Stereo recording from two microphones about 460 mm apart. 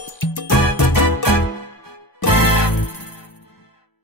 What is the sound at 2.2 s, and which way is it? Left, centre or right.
Music, left.